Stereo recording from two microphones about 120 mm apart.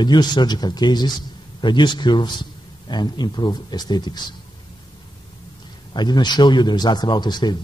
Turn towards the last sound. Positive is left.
turn(degrees=35)  # may be behind; listen again after turning